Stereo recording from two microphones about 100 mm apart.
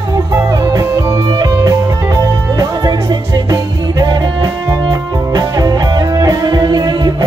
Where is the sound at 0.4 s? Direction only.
35° right (ahead or behind).